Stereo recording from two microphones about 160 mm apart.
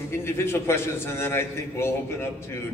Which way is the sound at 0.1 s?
15° left (ahead or behind).